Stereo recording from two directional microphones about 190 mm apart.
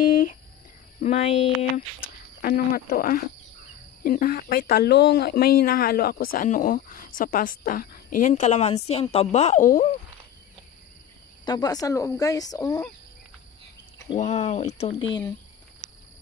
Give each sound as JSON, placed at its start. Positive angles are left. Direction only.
{"t": 1.0, "sound": "a woman's voice", "side_deg": 35}
{"t": 2.4, "sound": "a woman's voice", "side_deg": 50}
{"t": 11.4, "sound": "speech", "side_deg": 20}
{"t": 14.1, "sound": "a woman's voice", "side_deg": 35}